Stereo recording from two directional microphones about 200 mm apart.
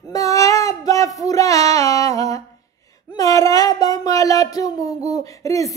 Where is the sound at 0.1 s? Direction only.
15° left (ahead or behind).